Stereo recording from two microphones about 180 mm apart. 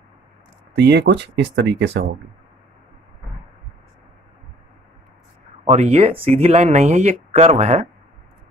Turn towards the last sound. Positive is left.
turn(degrees=-40)  # may be behind; listen again after turning